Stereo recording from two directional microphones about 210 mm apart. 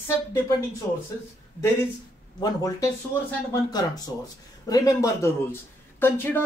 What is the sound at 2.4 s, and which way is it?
Speech, 20° left (ahead or behind).